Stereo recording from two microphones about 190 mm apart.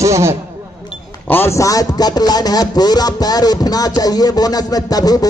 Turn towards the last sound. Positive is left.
turn(degrees=20)  # may be behind; listen again after turning